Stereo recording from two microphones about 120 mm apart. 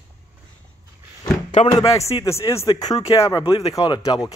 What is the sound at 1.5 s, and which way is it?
Speech, 65° left (ahead or behind).